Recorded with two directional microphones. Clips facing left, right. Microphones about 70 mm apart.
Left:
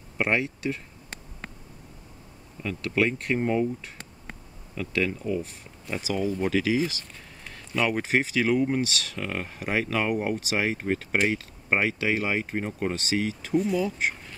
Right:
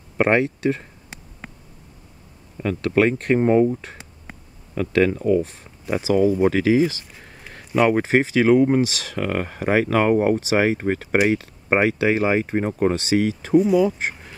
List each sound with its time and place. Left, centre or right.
0.2 s speech: right
1.4 s a sound: centre
2.6 s speech: right
5.3 s speech: right
13.6 s speech: centre